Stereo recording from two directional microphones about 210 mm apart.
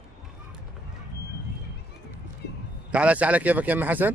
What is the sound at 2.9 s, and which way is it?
A man's voice, 5° right (ahead or behind).